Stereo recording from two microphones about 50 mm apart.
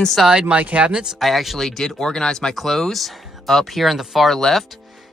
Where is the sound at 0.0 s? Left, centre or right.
Centre.